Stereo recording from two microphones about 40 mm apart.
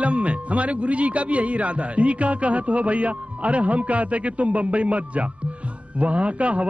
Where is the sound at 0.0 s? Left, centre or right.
Right.